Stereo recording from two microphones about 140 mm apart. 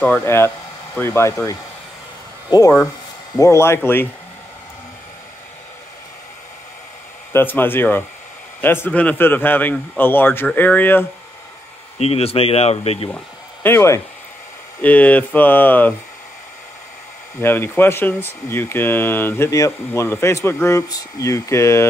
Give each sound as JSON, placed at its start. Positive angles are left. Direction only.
{"t": 0.0, "sound": "speech", "side_deg": 15}
{"t": 3.3, "sound": "speech", "side_deg": 20}
{"t": 7.3, "sound": "speech", "side_deg": 15}
{"t": 12.0, "sound": "speech", "side_deg": 45}
{"t": 13.1, "sound": "speech", "side_deg": 15}
{"t": 17.4, "sound": "speech", "side_deg": 15}